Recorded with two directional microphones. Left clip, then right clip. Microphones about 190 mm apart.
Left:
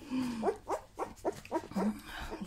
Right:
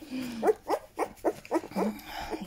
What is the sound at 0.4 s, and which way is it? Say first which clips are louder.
Dog: right 10 dB; 65° right (ahead or behind).